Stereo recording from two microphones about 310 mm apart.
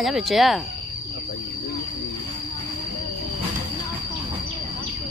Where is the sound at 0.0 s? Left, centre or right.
Centre.